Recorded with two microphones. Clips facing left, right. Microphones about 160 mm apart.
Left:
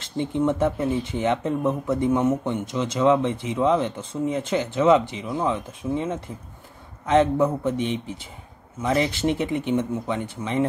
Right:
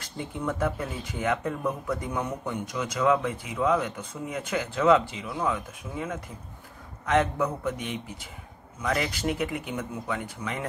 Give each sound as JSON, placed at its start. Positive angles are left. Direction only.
{"t": 0.0, "sound": "speech", "side_deg": 25}